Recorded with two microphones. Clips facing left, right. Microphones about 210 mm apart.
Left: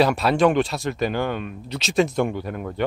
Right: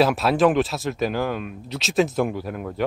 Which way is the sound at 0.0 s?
Centre (ahead or behind).